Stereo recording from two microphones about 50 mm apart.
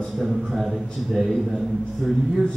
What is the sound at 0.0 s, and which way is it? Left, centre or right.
A man's voice, centre.